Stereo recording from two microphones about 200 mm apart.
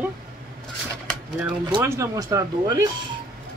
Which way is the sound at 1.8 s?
15° right (ahead or behind).